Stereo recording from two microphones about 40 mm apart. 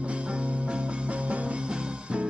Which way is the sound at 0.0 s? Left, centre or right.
Right.